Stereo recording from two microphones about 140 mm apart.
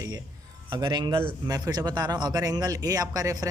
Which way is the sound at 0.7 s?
25° right (ahead or behind).